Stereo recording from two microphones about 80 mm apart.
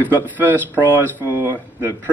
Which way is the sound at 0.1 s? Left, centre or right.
Right.